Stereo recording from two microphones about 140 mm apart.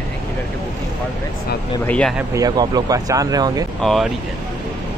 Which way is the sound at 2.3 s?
25° right (ahead or behind).